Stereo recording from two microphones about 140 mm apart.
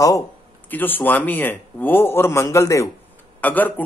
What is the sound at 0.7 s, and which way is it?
A man's voice, 15° left (ahead or behind).